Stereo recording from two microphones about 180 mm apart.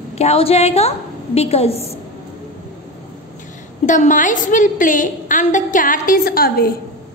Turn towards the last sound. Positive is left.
turn(degrees=55)  # may be behind; listen again after turning